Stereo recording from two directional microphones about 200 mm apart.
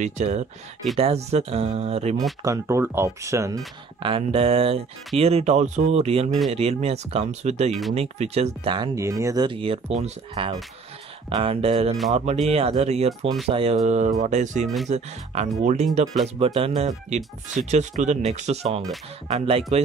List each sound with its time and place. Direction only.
0.0 s speech: 35° right (ahead or behind)
2.4 s speech: 15° right (ahead or behind)